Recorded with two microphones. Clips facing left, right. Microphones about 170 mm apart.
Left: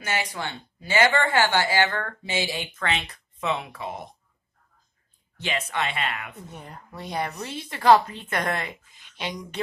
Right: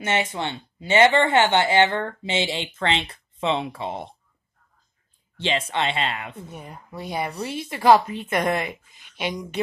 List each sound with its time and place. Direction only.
0.0 s speech: 25° right (ahead or behind)
5.4 s speech: 25° right (ahead or behind)
6.5 s a woman's voice: 5° right (ahead or behind)